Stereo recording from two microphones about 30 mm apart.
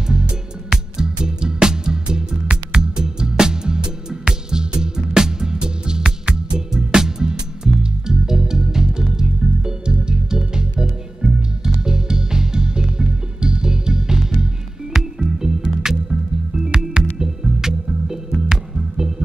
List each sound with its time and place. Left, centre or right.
0.0 s music: right
2.0 s music: right